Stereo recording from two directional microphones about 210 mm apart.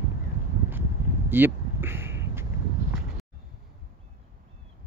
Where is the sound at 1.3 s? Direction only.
10° right (ahead or behind).